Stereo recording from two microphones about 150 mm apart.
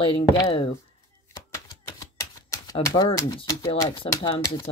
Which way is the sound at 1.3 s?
20° left (ahead or behind).